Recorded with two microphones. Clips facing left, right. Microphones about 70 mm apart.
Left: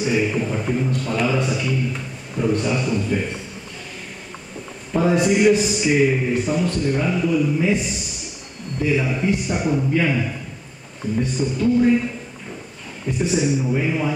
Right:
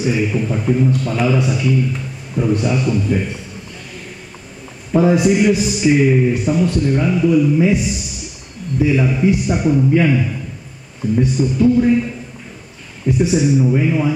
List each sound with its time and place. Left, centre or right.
0.0 s a man's voice: centre
4.9 s a man's voice: centre
13.2 s a man's voice: centre